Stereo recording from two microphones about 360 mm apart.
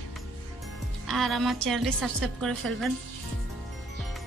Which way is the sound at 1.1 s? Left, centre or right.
Centre.